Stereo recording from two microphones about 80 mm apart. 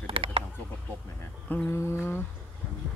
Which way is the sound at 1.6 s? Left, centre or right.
Left.